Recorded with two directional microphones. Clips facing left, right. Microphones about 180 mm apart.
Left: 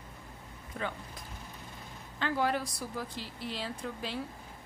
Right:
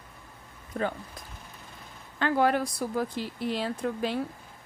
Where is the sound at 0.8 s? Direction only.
50° right (ahead or behind).